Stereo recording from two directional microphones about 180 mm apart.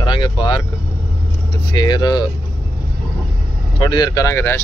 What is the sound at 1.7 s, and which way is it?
Speech, 25° left (ahead or behind).